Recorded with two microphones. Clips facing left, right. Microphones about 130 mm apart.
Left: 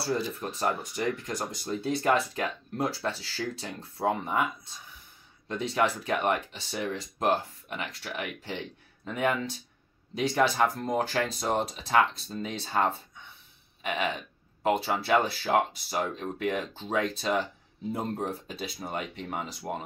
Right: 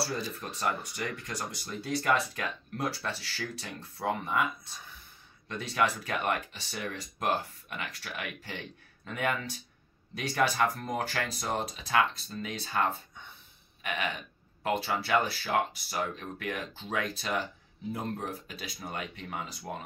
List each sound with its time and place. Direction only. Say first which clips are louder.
0.4 s speech: left 3 dB; 30° left (ahead or behind)
5.5 s speech: left 3 dB; 25° left (ahead or behind)